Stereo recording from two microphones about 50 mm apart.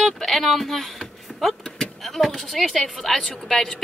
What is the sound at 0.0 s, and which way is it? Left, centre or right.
Speech, centre.